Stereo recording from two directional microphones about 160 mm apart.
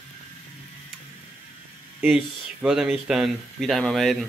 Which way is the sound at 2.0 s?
5° right (ahead or behind).